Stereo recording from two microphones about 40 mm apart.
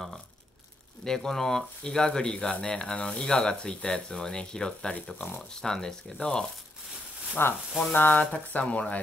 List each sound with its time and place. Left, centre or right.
1.0 s speech: centre
7.4 s sizzle: left
7.9 s speech: left